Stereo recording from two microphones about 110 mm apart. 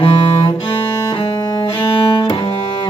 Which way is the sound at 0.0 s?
50° left (ahead or behind).